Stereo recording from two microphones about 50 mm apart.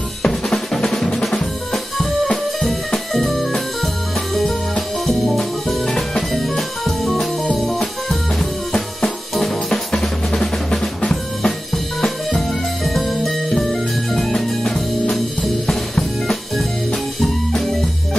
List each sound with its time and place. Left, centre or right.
0.2 s drum: centre
2.6 s music: centre
9.3 s drum: centre
12.4 s music: centre